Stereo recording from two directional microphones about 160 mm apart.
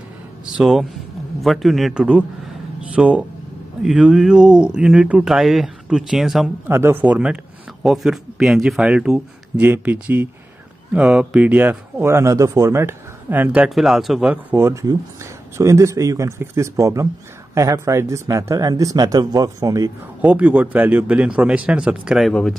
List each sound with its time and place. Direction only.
0.6 s a man's voice: centre (ahead or behind)
6.7 s speech: 15° right (ahead or behind)
20.2 s speech: 10° right (ahead or behind)